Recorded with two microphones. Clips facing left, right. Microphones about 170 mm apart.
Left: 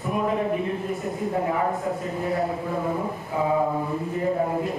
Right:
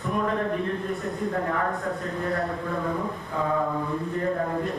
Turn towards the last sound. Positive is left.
turn(degrees=10)  # may be behind; listen again after turning